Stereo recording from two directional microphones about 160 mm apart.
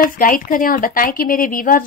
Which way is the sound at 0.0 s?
60° left (ahead or behind).